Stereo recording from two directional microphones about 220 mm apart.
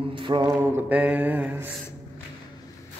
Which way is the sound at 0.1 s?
20° right (ahead or behind).